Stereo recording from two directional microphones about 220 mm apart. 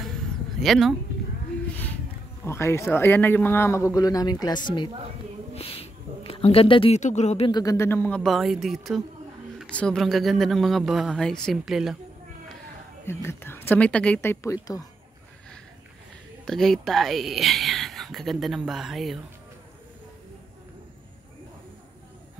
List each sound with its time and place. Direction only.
0.6 s speech: centre (ahead or behind)
2.4 s speech: 10° left (ahead or behind)
13.0 s speech: 10° left (ahead or behind)
16.4 s speech: centre (ahead or behind)